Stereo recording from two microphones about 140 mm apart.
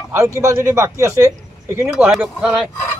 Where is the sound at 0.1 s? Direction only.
20° right (ahead or behind).